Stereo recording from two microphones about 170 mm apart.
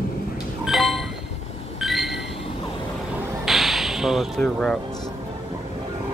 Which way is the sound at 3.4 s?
Centre (ahead or behind).